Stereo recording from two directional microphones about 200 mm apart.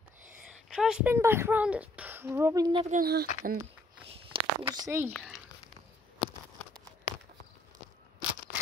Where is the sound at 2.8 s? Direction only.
45° right (ahead or behind).